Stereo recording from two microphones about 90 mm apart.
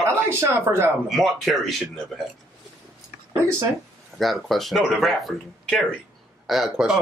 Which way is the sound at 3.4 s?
30° right (ahead or behind).